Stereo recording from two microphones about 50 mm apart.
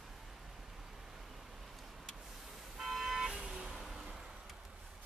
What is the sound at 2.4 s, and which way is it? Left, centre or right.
Vehicle, centre.